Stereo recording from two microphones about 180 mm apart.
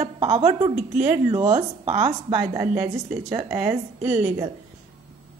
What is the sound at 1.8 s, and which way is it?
A woman's voice, 20° right (ahead or behind).